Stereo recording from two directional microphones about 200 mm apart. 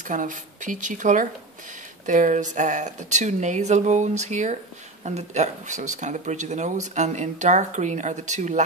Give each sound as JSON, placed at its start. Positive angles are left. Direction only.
{"t": 0.0, "sound": "speech", "side_deg": -40}